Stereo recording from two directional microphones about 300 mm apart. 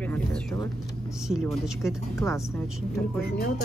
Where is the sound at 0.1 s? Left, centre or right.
Centre.